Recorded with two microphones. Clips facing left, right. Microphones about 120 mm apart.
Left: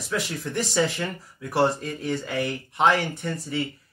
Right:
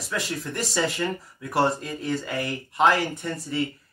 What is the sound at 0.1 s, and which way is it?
Speech, centre (ahead or behind).